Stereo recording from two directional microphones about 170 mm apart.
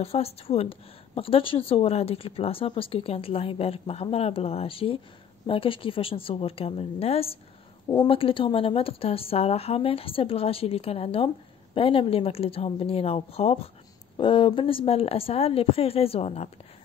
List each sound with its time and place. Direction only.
0.0 s a woman's voice: 35° left (ahead or behind)